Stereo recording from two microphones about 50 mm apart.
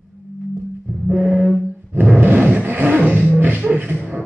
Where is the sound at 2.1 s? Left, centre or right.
Right.